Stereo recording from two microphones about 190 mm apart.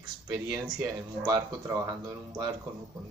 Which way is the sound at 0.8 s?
20° right (ahead or behind).